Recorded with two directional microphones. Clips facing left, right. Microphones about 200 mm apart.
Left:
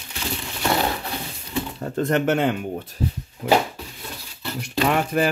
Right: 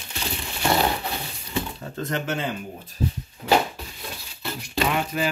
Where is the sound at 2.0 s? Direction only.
60° left (ahead or behind).